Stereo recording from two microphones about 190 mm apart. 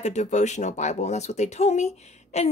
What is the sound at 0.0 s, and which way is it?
Speech, 35° left (ahead or behind).